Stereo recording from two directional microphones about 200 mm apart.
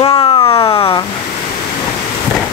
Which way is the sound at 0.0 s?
20° left (ahead or behind).